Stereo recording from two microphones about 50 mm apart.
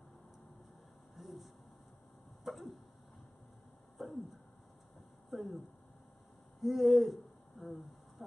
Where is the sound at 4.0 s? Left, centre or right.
Centre.